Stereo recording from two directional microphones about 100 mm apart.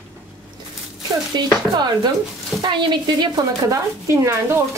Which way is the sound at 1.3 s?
45° right (ahead or behind).